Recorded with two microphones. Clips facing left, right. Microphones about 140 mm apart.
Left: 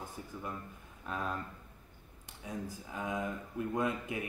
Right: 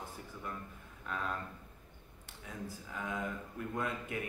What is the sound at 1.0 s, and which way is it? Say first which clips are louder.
Speech: left 2 dB; 20° left (ahead or behind).